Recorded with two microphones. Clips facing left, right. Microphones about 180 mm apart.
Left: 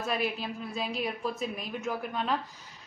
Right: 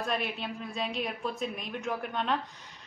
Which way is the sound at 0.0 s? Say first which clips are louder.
Left 1 dB; centre (ahead or behind).